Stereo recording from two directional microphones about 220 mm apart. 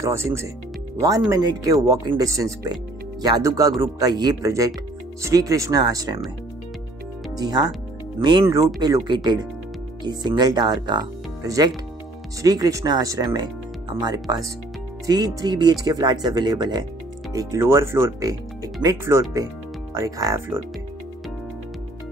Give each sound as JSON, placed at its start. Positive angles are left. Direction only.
{"t": 0.0, "sound": "speech", "side_deg": -10}
{"t": 7.3, "sound": "speech", "side_deg": -20}
{"t": 15.0, "sound": "speech", "side_deg": -15}